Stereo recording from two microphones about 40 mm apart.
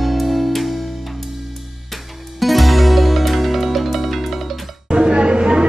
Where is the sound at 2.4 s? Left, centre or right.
Centre.